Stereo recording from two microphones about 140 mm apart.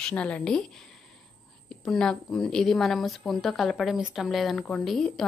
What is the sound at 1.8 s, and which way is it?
A woman's voice, 5° left (ahead or behind).